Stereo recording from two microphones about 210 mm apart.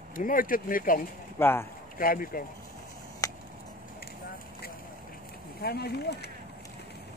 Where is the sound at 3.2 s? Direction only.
15° left (ahead or behind).